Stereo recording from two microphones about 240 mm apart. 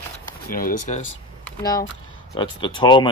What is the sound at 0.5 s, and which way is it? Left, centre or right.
Speech, left.